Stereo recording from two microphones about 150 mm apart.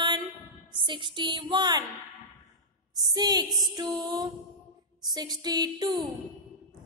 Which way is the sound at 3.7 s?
30° right (ahead or behind).